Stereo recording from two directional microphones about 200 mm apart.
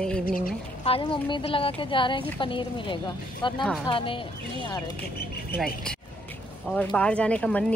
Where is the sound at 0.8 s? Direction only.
25° left (ahead or behind).